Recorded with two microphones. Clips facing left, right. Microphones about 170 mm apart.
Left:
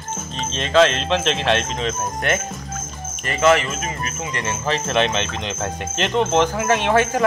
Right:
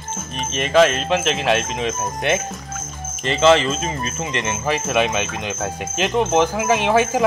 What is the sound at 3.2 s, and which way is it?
Speech, 25° right (ahead or behind).